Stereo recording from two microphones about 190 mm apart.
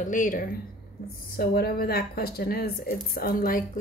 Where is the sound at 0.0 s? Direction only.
45° left (ahead or behind).